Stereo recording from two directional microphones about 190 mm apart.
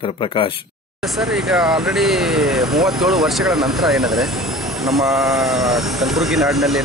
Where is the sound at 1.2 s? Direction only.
Centre (ahead or behind).